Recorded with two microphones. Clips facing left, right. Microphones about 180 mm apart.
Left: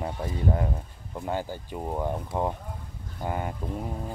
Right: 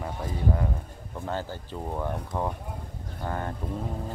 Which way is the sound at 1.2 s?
15° left (ahead or behind).